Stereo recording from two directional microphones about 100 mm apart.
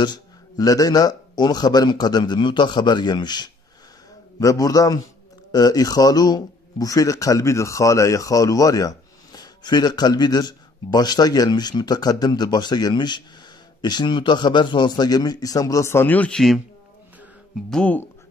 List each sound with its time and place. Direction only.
0.0 s speech: 45° left (ahead or behind)
4.4 s a man's voice: 35° left (ahead or behind); by 16.6 s 5° left (ahead or behind)
17.6 s speech: 10° left (ahead or behind)